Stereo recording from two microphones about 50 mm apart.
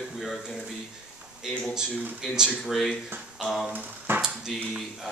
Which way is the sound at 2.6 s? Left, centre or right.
Centre.